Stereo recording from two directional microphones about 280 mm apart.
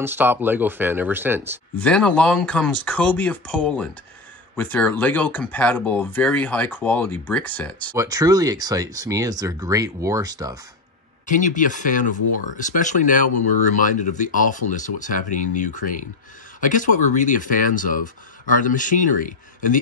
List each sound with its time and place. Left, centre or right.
0.0 s speech: centre
1.8 s speech: centre
7.9 s speech: centre
11.2 s speech: left